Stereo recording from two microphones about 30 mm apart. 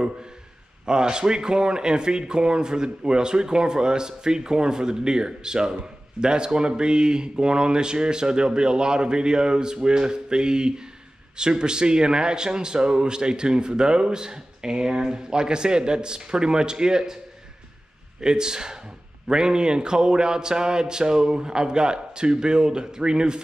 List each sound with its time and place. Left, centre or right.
0.8 s speech: right
18.2 s speech: right